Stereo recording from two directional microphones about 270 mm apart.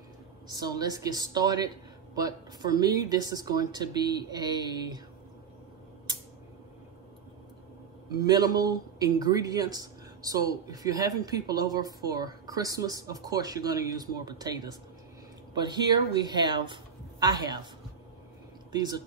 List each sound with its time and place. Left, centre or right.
0.5 s a man's voice: centre
8.2 s a man's voice: centre
18.7 s a man's voice: centre